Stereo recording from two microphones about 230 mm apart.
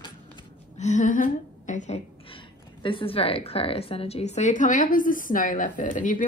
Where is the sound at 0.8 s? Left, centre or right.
Left.